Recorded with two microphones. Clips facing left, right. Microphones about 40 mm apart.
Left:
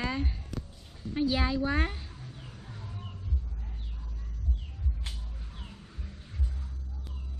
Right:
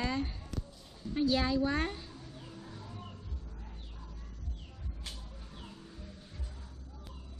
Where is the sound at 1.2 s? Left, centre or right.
Centre.